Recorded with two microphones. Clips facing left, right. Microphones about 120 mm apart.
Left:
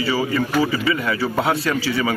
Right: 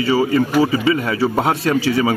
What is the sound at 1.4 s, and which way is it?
Speech, 45° right (ahead or behind).